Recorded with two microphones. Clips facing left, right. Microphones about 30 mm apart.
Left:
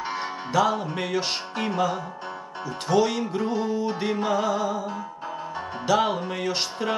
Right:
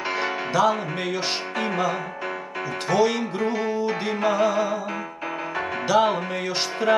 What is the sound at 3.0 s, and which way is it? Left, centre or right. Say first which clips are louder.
Music: right 2 dB; centre.